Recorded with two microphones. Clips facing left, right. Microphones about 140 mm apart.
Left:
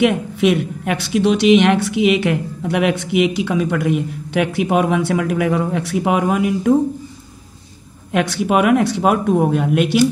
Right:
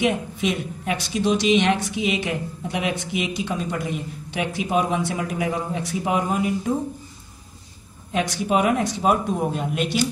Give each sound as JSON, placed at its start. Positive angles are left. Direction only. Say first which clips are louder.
{"t": 0.0, "sound": "a woman's voice", "louder": "left 7 dB", "side_deg": 70}
{"t": 8.1, "sound": "a woman's voice", "louder": "left 5 dB", "side_deg": 65}